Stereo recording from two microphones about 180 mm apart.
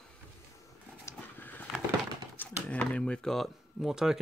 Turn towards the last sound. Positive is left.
turn(degrees=0)  # may be behind; listen again after turning